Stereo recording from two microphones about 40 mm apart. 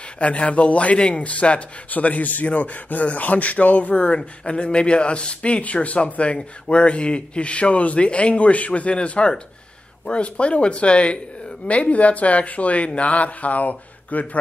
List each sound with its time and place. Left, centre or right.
0.2 s speech: left